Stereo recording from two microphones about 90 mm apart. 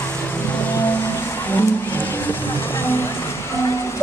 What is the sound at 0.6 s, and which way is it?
Music, 20° left (ahead or behind).